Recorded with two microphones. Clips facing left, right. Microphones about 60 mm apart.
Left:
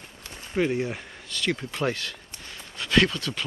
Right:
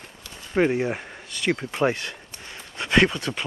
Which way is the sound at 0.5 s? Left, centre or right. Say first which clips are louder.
Right 4 dB; right.